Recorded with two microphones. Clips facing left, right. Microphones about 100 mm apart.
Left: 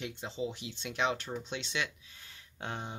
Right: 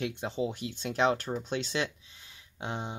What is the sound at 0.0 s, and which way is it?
Speech, 60° right (ahead or behind).